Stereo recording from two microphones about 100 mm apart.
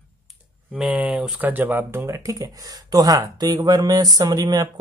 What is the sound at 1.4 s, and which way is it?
Speech, 20° right (ahead or behind).